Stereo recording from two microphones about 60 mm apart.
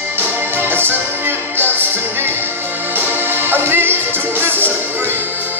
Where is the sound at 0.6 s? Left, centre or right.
Right.